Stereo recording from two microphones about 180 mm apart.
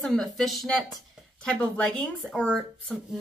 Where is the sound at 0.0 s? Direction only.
Centre (ahead or behind).